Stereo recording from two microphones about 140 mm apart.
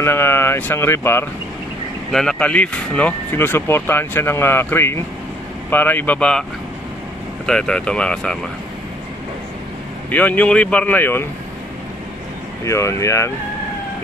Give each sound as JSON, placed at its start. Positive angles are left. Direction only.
{"t": 0.0, "sound": "speech", "side_deg": 15}
{"t": 2.1, "sound": "speech", "side_deg": 5}
{"t": 7.4, "sound": "speech", "side_deg": 5}
{"t": 10.1, "sound": "speech", "side_deg": 10}
{"t": 12.6, "sound": "speech", "side_deg": 20}